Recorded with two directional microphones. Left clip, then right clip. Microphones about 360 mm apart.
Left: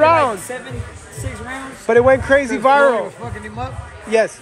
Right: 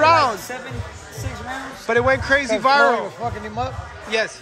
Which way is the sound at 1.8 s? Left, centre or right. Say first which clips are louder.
Left 5 dB; centre.